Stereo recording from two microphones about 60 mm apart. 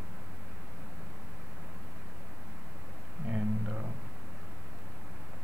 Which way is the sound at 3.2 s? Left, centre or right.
Centre.